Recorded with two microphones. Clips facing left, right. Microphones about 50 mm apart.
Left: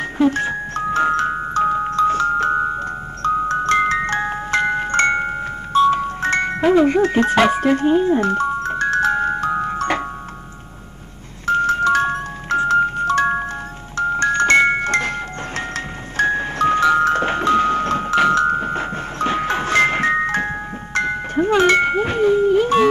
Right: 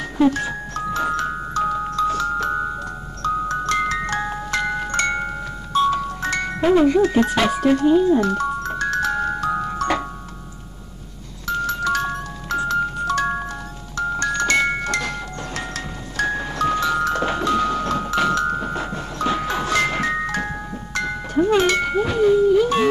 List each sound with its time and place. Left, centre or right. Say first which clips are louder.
0.0 s music: left 1 dB; left
11.4 s music: left 6 dB; left